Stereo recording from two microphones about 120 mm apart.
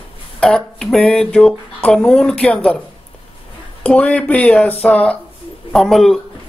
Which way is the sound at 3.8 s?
10° left (ahead or behind).